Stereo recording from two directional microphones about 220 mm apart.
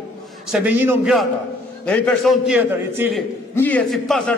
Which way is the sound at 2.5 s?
10° right (ahead or behind).